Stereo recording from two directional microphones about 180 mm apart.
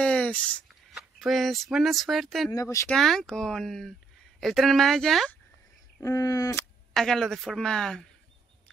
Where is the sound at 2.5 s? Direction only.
15° left (ahead or behind).